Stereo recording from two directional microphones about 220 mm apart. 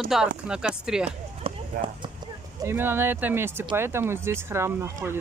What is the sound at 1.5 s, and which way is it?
Clip-clop, 25° right (ahead or behind).